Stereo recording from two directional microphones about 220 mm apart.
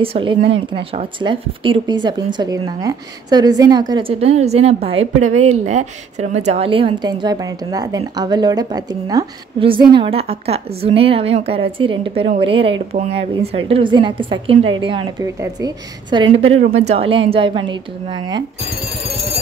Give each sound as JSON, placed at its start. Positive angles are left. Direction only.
{"t": 0.0, "sound": "a woman's voice", "side_deg": -25}